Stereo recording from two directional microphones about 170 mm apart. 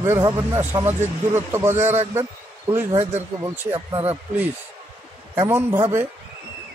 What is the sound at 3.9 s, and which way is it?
Speech, 10° right (ahead or behind).